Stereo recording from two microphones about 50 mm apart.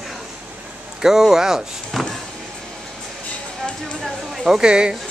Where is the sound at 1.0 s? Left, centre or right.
Centre.